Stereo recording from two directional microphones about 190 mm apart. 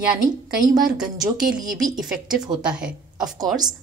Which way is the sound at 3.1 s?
20° right (ahead or behind).